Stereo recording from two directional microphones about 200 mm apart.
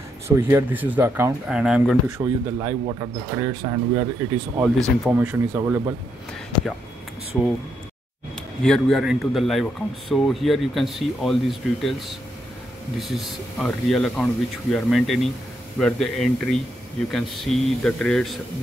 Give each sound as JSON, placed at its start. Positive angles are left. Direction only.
{"t": 0.4, "sound": "speech", "side_deg": -10}
{"t": 2.0, "sound": "speech", "side_deg": -15}
{"t": 4.6, "sound": "a man's voice", "side_deg": 0}
{"t": 8.6, "sound": "a man's voice", "side_deg": 0}